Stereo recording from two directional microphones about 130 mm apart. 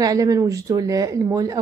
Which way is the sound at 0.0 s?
25° right (ahead or behind).